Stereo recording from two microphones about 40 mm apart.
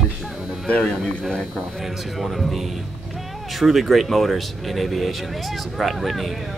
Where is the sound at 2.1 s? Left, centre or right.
Centre.